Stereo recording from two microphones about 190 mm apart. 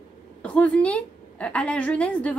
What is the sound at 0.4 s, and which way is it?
A woman's voice, 5° left (ahead or behind).